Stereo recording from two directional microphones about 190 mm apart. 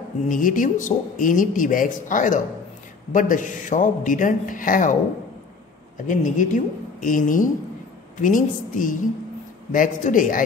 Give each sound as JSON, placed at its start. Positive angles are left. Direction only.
{"t": 0.2, "sound": "speech", "side_deg": 45}
{"t": 6.0, "sound": "speech", "side_deg": 40}